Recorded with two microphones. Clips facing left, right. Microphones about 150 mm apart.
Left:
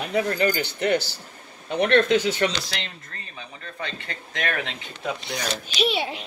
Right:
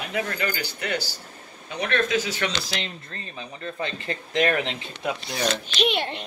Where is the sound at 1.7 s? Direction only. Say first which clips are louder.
Left 6 dB; 55° left (ahead or behind).